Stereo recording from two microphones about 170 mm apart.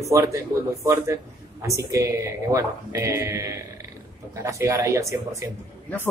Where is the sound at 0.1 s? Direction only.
20° right (ahead or behind).